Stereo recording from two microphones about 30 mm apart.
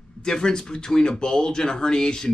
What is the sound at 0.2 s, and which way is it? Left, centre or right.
Speech, left.